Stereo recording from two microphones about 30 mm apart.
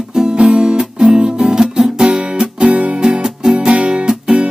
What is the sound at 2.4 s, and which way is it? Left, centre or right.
Music, right.